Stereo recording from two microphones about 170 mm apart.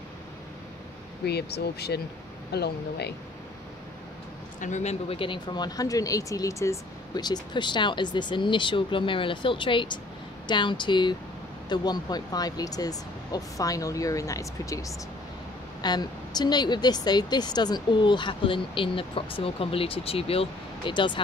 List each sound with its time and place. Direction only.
1.2 s speech: 70° left (ahead or behind)
4.6 s a woman's voice: 45° left (ahead or behind); by 21.2 s 30° left (ahead or behind)